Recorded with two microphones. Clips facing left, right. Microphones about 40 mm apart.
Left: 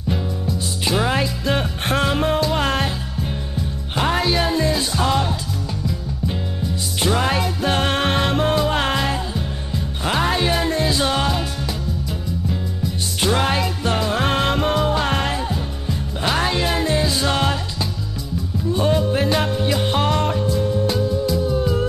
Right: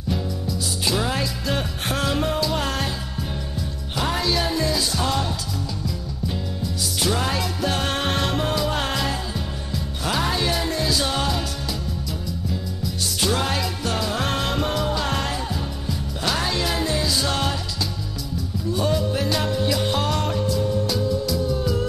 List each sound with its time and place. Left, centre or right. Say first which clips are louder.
0.8 s music: left 4 dB; left
3.9 s music: left 4 dB; left
7.2 s music: left 4 dB; left
12.8 s music: left 3 dB; left
18.7 s music: left 4 dB; left